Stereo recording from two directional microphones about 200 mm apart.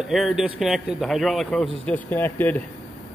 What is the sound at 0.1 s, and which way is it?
A man's voice, centre (ahead or behind).